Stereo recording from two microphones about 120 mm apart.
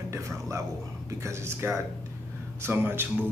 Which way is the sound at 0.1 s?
25° right (ahead or behind).